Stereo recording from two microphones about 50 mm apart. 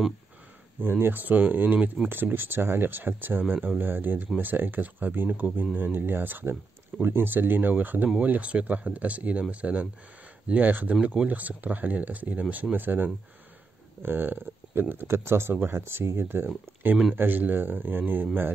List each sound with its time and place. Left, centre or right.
0.8 s speech: right
15.0 s speech: right